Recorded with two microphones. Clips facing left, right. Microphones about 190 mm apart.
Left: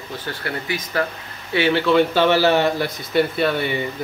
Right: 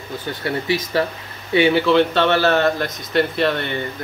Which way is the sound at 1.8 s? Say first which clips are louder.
Even; 5° left (ahead or behind).